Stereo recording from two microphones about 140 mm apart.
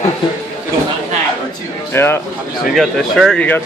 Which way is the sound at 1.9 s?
15° left (ahead or behind).